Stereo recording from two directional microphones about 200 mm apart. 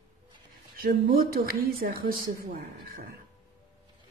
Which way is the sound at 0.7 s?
45° right (ahead or behind).